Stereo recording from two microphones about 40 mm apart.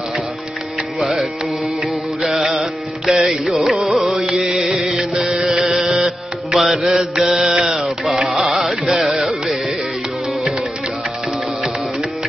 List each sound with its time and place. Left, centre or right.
0.9 s music: centre
2.3 s music: centre
5.6 s a sound: centre
6.0 s music: centre
7.2 s mantra: centre
7.7 s a sound: centre
8.4 s carnatic music: centre